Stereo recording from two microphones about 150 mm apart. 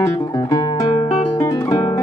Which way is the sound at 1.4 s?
25° left (ahead or behind).